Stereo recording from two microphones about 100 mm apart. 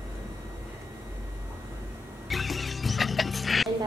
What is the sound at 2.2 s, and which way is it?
Music, centre (ahead or behind).